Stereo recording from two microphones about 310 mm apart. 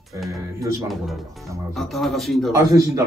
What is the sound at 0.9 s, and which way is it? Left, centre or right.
Speech, centre.